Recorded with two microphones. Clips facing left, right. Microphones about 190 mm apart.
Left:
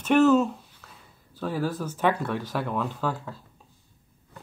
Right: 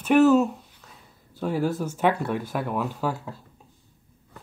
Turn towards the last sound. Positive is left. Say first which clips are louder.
# right 1 dB
turn(degrees=-10)  # may be behind; listen again after turning